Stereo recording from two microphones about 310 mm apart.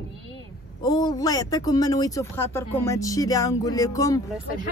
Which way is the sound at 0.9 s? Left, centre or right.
Centre.